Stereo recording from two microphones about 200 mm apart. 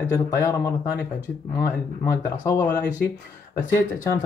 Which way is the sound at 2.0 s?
15° left (ahead or behind).